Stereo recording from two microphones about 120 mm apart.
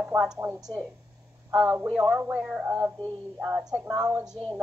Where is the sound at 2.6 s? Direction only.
20° right (ahead or behind).